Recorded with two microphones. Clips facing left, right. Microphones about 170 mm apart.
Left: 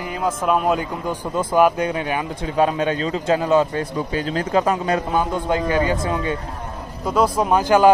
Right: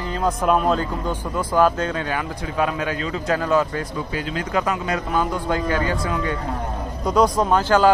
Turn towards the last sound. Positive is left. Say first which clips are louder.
# left 2 dB
turn(degrees=15)  # may be behind; listen again after turning